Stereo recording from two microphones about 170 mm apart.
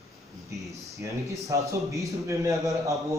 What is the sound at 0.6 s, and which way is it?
A man's voice, 20° right (ahead or behind).